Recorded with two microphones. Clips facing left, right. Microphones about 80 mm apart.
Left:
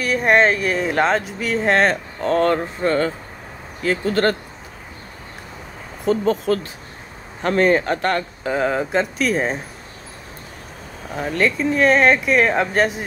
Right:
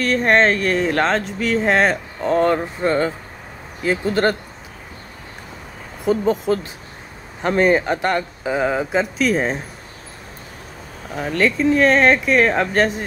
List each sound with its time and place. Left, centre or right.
0.0 s speech: centre
6.0 s speech: centre
11.1 s speech: centre